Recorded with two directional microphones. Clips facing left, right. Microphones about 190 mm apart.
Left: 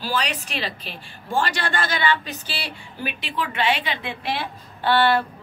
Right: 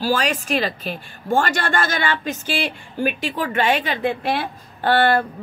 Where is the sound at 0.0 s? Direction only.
45° right (ahead or behind).